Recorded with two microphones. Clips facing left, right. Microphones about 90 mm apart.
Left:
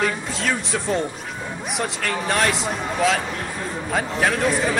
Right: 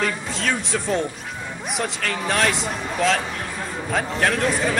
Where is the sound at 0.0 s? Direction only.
Centre (ahead or behind).